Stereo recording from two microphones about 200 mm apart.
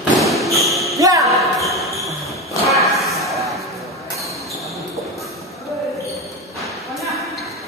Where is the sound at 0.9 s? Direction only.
15° right (ahead or behind).